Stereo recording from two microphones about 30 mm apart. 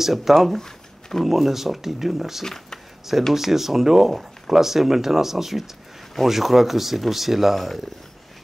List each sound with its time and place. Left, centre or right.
0.0 s speech: centre
0.6 s a sound: centre
1.2 s speech: centre
2.4 s speech: centre
3.3 s speech: centre